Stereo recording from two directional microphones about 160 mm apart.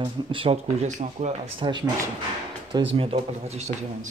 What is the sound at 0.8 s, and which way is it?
Speech, 45° right (ahead or behind).